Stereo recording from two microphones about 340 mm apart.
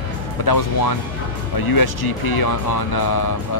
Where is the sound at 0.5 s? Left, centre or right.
Left.